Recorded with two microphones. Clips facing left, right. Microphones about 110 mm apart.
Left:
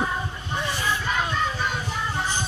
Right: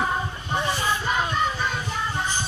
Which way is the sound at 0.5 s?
20° right (ahead or behind).